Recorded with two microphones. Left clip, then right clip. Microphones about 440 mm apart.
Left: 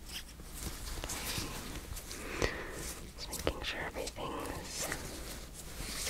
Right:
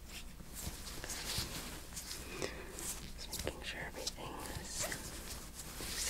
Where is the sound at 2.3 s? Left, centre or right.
Left.